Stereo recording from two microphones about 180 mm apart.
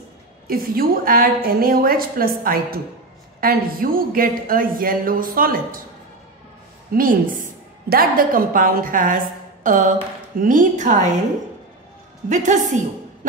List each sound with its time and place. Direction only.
0.5 s a woman's voice: 55° right (ahead or behind)
6.9 s a woman's voice: 50° right (ahead or behind)
12.3 s a woman's voice: 45° right (ahead or behind)